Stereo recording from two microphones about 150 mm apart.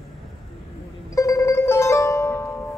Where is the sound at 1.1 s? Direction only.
20° left (ahead or behind).